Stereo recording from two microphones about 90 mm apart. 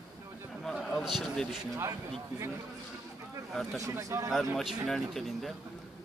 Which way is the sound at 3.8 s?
35° right (ahead or behind).